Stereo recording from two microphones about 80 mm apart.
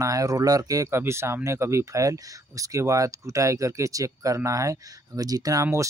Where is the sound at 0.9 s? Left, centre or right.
Right.